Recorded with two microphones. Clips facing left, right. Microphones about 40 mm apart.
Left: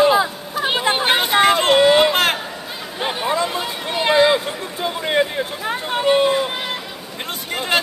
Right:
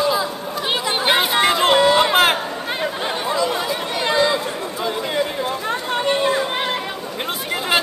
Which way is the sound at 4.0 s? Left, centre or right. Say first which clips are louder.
Left 4 dB; left.